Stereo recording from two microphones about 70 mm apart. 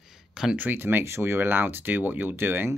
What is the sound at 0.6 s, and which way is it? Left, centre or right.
Speech, right.